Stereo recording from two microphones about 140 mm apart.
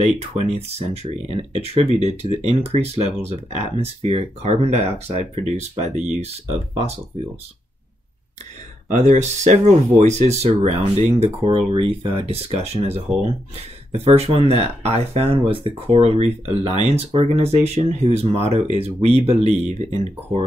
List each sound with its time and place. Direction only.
0.0 s speech: 50° right (ahead or behind)
8.9 s speech: 60° right (ahead or behind)